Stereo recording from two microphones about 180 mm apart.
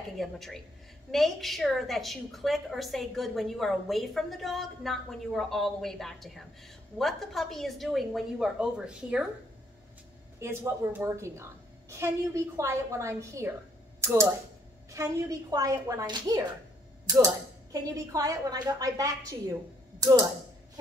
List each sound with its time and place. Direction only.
0.2 s a woman's voice: centre (ahead or behind)
10.4 s a woman's voice: 15° right (ahead or behind)